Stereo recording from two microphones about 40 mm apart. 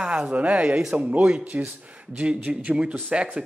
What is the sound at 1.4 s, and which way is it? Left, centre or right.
Speech, right.